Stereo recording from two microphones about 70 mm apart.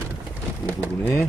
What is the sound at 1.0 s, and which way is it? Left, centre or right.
Speech, left.